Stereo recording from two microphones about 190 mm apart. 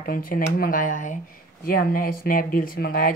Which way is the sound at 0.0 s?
50° left (ahead or behind).